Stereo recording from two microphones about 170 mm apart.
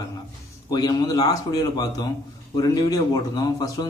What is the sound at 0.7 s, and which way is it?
A man's voice, 25° left (ahead or behind).